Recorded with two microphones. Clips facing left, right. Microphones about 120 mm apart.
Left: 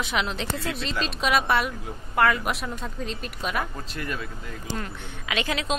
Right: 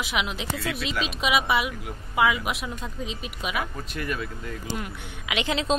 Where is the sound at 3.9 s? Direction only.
30° left (ahead or behind).